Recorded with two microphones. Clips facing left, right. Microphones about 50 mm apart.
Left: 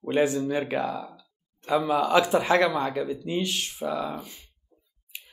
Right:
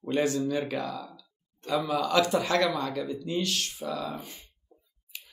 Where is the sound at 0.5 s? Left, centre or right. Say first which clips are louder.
Left 3 dB; left.